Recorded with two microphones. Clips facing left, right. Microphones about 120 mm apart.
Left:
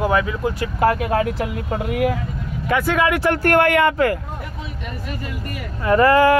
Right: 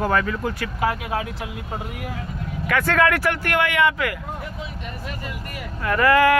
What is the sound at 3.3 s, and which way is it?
Speech, 45° left (ahead or behind).